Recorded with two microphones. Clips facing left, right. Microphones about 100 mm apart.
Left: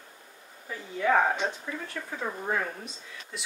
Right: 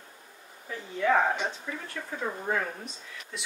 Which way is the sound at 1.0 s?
5° left (ahead or behind).